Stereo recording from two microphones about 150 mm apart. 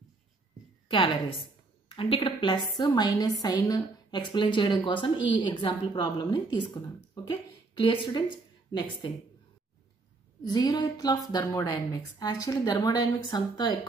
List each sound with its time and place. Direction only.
0.8 s a woman's voice: 35° left (ahead or behind)
7.9 s speech: 35° left (ahead or behind)
10.4 s a woman's voice: 25° left (ahead or behind)